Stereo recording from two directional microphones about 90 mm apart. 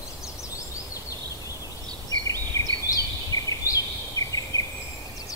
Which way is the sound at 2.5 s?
40° left (ahead or behind).